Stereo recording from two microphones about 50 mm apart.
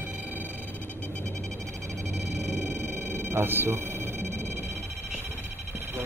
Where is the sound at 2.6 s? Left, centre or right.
Right.